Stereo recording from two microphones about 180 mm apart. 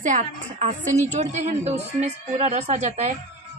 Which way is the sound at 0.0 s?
45° right (ahead or behind).